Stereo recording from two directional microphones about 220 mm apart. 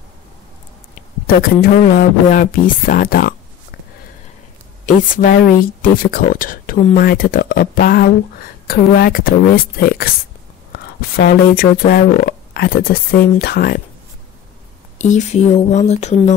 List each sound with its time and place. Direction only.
1.2 s speech: 40° left (ahead or behind)
4.8 s speech: 40° left (ahead or behind)
15.0 s speech: 35° left (ahead or behind)